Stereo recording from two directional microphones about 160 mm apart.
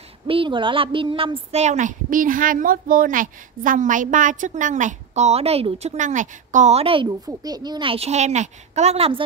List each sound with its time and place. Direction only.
0.3 s speech: 30° right (ahead or behind)